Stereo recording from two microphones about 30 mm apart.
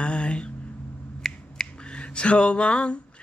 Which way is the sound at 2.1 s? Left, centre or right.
Left.